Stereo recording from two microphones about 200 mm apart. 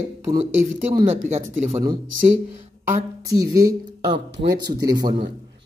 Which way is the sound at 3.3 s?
15° right (ahead or behind).